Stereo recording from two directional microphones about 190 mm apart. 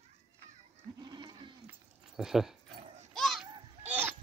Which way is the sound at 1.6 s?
Centre (ahead or behind).